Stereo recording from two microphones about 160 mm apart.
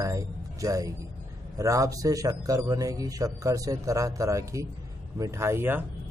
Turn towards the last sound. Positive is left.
turn(degrees=-15)  # may be behind; listen again after turning